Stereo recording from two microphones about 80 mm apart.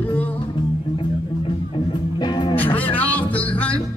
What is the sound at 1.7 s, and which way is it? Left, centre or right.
Music, left.